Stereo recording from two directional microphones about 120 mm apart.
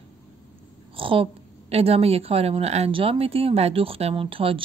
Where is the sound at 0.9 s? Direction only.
50° right (ahead or behind).